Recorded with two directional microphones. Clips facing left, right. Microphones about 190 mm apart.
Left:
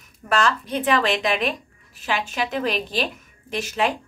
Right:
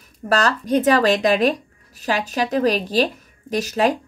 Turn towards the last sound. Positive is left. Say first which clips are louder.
# right 5 dB
turn(degrees=-40)  # may be behind; listen again after turning